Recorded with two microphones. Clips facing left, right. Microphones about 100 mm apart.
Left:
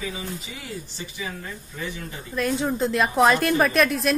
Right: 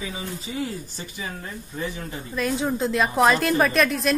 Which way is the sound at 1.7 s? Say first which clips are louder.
Right 3 dB; 35° right (ahead or behind).